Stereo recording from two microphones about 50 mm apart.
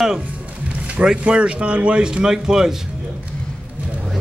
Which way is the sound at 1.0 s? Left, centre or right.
Centre.